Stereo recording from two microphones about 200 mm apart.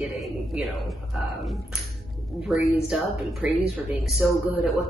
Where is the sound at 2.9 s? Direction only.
Centre (ahead or behind).